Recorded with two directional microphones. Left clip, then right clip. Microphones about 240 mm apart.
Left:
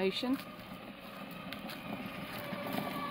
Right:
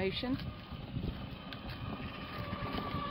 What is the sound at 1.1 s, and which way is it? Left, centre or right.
Vehicle, centre.